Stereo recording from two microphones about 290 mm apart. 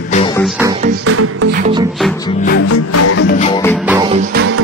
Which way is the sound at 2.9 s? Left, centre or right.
Left.